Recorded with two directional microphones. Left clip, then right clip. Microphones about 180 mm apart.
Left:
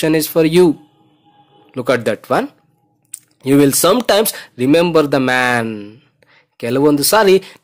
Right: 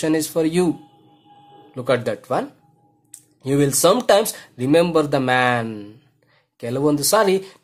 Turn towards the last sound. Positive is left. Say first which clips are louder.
# left 6 dB
turn(degrees=25)  # may be behind; listen again after turning